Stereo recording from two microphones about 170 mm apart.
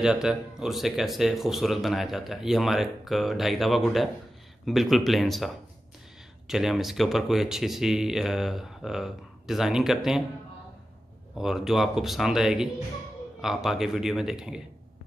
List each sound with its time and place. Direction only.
0.0 s speech: 5° right (ahead or behind)
11.3 s speech: 5° right (ahead or behind)